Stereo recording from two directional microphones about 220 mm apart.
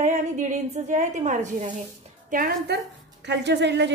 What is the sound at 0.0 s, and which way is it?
A woman's voice, 35° right (ahead or behind).